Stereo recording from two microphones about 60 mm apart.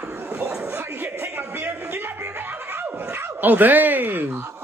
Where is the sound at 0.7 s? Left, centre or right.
Right.